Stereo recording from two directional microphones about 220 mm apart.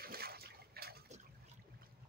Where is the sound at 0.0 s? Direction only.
45° right (ahead or behind).